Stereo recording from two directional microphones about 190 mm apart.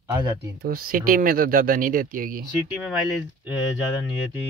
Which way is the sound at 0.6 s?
50° right (ahead or behind).